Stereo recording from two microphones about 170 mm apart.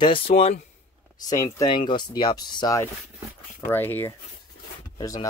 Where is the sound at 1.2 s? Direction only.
20° left (ahead or behind).